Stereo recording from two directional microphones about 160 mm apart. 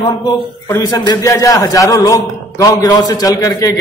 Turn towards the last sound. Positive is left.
turn(degrees=20)  # may be behind; listen again after turning